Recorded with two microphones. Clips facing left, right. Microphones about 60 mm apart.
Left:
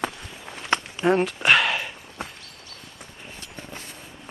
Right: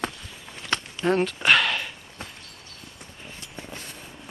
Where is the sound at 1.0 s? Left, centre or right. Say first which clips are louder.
Left 1 dB; centre.